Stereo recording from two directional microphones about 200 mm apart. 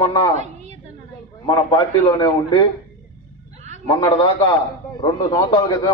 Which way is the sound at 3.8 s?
20° left (ahead or behind).